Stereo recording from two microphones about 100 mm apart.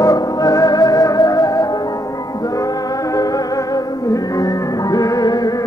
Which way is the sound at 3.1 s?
40° left (ahead or behind).